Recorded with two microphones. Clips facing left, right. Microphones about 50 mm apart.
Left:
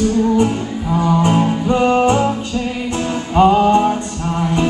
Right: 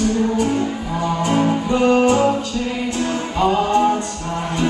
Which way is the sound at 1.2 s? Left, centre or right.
Left.